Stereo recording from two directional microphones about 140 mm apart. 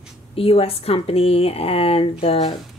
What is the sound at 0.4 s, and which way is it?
A woman's voice, 45° left (ahead or behind).